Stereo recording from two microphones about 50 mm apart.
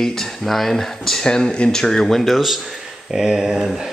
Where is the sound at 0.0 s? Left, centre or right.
Centre.